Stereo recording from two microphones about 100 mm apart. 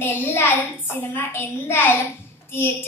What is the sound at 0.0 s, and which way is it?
Speech, 20° left (ahead or behind).